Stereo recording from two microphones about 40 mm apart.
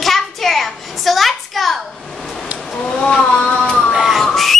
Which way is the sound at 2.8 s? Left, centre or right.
Left.